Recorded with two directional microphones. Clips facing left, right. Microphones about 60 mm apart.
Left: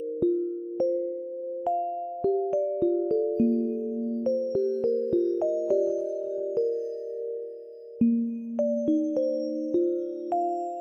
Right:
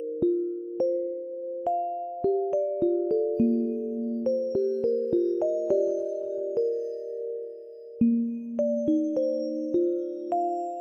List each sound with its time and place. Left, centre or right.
3.5 s music: right
4.7 s music: left
5.5 s music: right
8.8 s music: left
10.3 s music: centre